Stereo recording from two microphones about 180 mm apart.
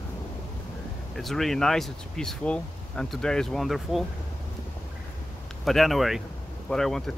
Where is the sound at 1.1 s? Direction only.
Centre (ahead or behind).